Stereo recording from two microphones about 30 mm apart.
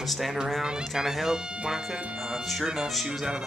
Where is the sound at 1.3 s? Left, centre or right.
Right.